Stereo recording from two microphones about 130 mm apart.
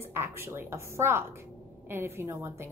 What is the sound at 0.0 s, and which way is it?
A woman's voice, 20° right (ahead or behind).